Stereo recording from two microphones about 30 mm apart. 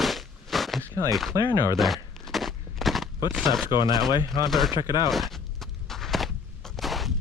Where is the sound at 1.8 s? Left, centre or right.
Centre.